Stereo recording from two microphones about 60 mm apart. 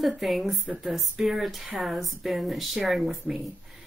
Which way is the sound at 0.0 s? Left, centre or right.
Centre.